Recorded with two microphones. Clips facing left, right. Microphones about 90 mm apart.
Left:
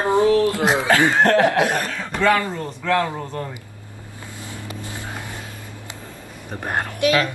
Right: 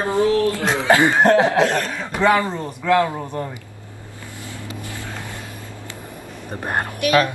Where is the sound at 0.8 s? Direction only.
20° right (ahead or behind).